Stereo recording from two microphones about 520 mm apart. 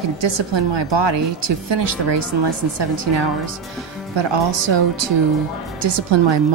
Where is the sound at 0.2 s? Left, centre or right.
Right.